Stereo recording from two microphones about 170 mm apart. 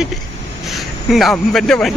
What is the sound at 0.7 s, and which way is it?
Speech, centre (ahead or behind).